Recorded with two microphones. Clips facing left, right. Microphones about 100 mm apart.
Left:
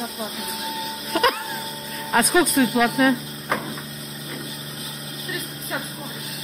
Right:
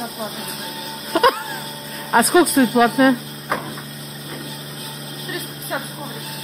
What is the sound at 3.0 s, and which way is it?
Speech, 5° right (ahead or behind).